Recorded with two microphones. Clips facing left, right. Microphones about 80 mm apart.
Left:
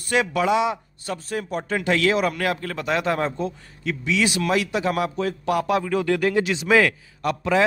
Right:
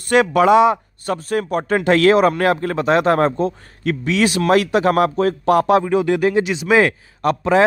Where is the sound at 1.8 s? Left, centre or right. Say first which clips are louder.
Right 8 dB; right.